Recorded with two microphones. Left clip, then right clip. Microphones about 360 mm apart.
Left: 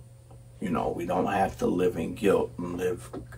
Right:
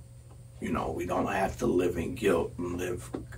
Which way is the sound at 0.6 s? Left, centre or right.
Centre.